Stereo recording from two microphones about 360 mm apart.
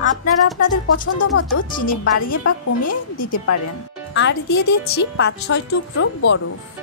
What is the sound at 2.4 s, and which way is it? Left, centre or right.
Speech, left.